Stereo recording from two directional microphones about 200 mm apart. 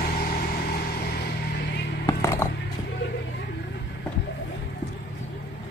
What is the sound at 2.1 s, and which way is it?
Music, 15° left (ahead or behind).